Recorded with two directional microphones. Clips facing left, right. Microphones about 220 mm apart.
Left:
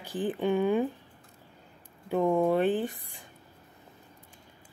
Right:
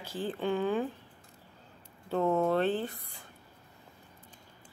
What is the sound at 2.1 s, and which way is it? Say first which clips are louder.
A woman's voice: left 3 dB; 15° left (ahead or behind).